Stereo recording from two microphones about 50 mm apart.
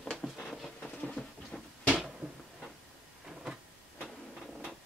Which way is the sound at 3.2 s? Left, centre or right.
Centre.